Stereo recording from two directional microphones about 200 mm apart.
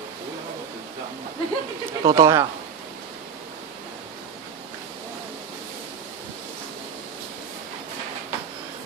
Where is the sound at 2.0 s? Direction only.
15° right (ahead or behind).